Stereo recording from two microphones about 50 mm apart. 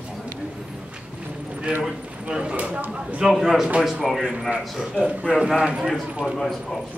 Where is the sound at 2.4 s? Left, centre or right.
Right.